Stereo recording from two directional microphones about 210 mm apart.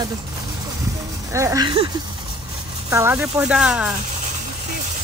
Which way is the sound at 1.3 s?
15° right (ahead or behind).